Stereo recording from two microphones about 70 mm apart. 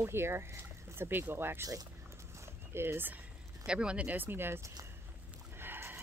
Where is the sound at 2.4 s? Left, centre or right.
Right.